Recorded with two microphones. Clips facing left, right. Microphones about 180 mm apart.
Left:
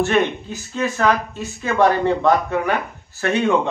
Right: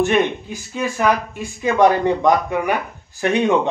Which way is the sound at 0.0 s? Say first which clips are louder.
Right 1 dB; 15° right (ahead or behind).